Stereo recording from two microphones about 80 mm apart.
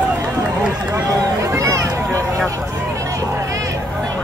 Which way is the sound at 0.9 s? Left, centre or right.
Right.